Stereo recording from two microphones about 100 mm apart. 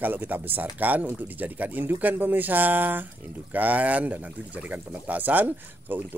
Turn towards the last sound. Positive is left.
turn(degrees=-20)  # may be behind; listen again after turning